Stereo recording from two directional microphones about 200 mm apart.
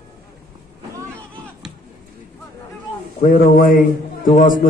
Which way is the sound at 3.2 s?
45° left (ahead or behind).